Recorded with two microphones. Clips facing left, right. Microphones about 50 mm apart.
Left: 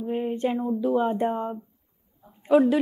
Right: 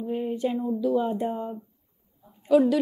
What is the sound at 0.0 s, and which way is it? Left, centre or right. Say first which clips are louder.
Speech: left 1 dB; left.